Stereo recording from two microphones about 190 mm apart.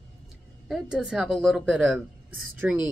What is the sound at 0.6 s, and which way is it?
A woman's voice, centre (ahead or behind).